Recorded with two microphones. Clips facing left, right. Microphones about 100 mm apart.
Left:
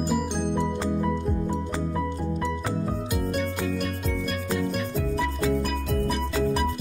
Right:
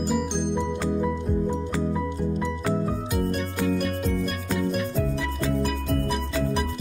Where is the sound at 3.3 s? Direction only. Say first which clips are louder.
Right 2 dB; 5° left (ahead or behind).